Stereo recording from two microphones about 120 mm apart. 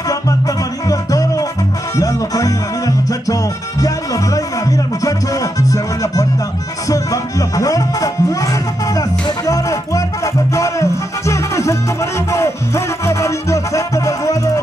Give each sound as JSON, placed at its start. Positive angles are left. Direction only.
{"t": 0.1, "sound": "music", "side_deg": 30}
{"t": 3.8, "sound": "music", "side_deg": 30}